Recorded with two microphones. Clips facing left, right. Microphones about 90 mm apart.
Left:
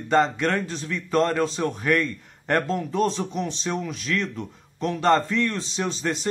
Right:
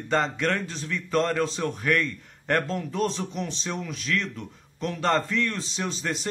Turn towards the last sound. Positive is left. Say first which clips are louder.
# left 3 dB
turn(degrees=0)  # may be behind; listen again after turning